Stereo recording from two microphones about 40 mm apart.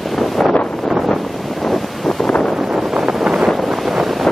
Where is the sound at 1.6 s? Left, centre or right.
Centre.